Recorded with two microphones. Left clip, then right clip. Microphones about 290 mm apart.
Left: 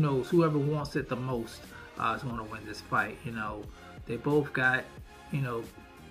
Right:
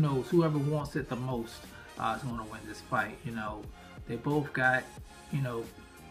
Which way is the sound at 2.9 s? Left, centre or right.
Centre.